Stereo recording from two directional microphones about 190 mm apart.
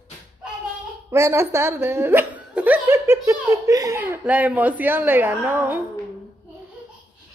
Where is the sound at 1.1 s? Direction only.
15° right (ahead or behind).